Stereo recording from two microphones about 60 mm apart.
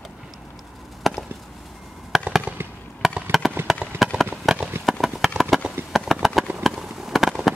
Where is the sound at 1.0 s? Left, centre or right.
Centre.